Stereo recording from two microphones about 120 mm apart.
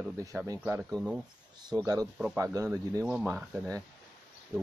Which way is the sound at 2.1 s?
5° right (ahead or behind).